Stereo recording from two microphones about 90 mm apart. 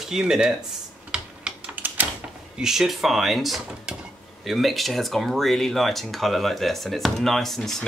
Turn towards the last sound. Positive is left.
turn(degrees=5)  # may be behind; listen again after turning